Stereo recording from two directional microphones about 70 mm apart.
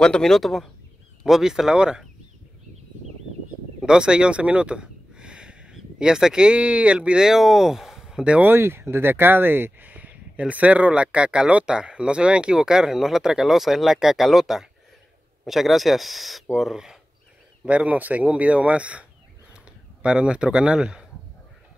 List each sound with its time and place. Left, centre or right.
0.0 s speech: centre
1.2 s speech: centre
3.8 s speech: centre
8.5 s speech: right; by 17.0 s centre
17.6 s speech: centre